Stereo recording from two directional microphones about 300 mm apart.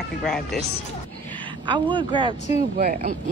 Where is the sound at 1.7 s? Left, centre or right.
Centre.